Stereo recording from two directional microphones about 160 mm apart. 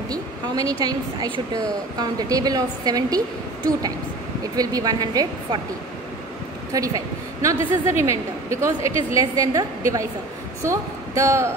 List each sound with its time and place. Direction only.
0.1 s a woman's voice: 20° right (ahead or behind)
4.6 s a woman's voice: 25° right (ahead or behind)
6.7 s a woman's voice: 20° right (ahead or behind)